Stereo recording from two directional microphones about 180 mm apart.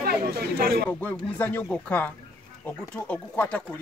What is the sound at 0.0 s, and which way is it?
Speech, 60° right (ahead or behind).